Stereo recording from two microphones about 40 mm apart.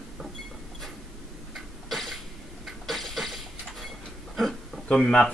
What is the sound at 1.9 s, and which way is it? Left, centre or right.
Cough, centre.